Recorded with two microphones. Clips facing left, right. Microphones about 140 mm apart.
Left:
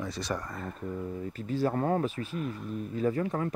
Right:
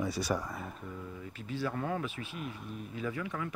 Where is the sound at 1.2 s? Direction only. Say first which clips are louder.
Left 6 dB; 40° left (ahead or behind).